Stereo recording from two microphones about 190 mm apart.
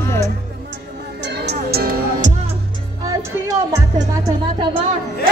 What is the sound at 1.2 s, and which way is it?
Music, 60° right (ahead or behind).